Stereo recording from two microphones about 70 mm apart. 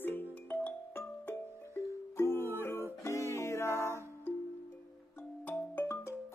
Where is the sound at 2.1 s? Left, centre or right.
Left.